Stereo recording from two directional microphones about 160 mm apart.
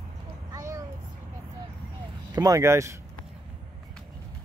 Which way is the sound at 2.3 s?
20° right (ahead or behind).